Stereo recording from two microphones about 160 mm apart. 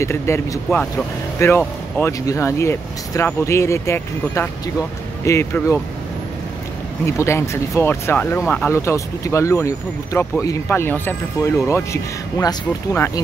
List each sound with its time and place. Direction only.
0.0 s speech: 20° left (ahead or behind)
7.1 s speech: 15° left (ahead or behind)